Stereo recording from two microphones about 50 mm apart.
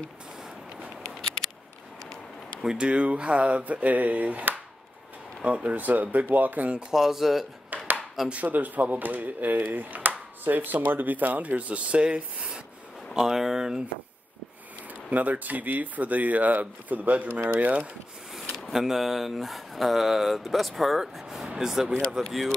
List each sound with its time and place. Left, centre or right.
1.0 s a sound: centre
2.6 s speech: centre
6.9 s speech: centre
7.7 s a sound: right
8.3 s speech: right
13.1 s speech: centre
15.0 s speech: right
18.7 s speech: centre